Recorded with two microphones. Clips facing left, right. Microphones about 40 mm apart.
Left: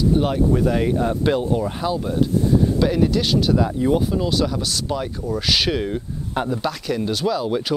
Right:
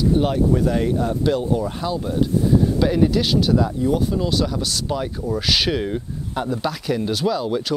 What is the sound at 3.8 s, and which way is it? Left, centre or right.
Speech, left.